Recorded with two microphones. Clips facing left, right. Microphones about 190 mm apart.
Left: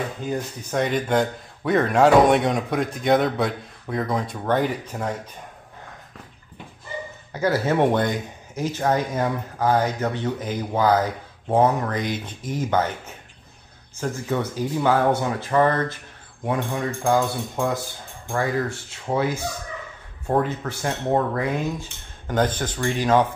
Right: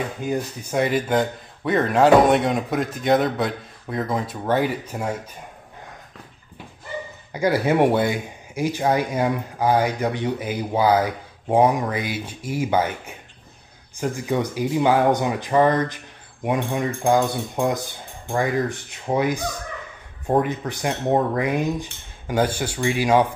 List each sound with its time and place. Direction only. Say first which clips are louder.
0.2 s speech: right 2 dB; 10° right (ahead or behind)
7.3 s speech: right 2 dB; 15° right (ahead or behind)